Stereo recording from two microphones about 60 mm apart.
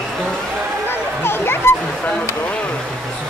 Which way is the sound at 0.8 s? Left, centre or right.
Left.